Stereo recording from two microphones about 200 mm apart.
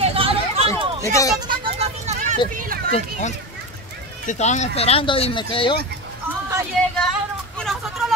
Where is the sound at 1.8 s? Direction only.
35° right (ahead or behind).